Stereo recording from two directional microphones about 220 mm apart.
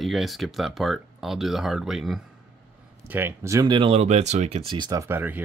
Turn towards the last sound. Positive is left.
turn(degrees=-10)  # may be behind; listen again after turning